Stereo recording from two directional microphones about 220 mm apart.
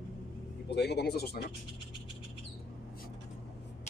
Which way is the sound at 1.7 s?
25° left (ahead or behind).